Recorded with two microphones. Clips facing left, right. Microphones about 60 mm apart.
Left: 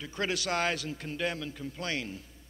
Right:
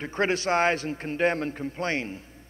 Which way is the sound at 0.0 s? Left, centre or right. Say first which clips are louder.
Right 7 dB; right.